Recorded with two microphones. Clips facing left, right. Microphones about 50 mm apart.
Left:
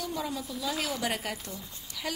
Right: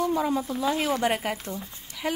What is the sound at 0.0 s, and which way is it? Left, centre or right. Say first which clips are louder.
A woman's voice: right 9 dB; right.